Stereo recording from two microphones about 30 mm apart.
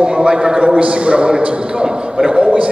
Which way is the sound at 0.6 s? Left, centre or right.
Right.